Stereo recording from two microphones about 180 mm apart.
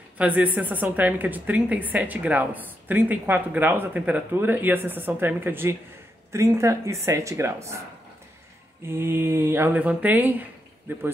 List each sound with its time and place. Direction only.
0.2 s a woman's voice: 10° right (ahead or behind)
8.8 s a woman's voice: 15° right (ahead or behind)